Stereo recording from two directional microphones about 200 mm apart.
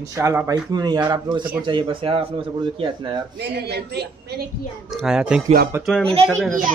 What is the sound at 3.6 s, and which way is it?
Speech, 55° right (ahead or behind).